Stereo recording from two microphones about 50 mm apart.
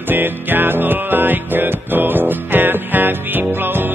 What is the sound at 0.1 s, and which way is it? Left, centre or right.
Music, right.